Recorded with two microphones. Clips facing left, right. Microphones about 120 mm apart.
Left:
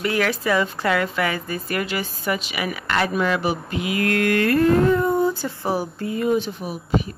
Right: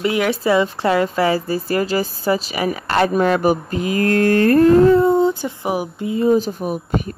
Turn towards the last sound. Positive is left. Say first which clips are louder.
# right 3 dB
turn(degrees=-50)  # may be behind; listen again after turning